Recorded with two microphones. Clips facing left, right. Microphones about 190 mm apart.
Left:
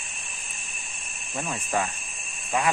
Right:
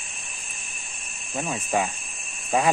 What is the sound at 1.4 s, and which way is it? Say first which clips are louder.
Speech: right 3 dB; 15° right (ahead or behind).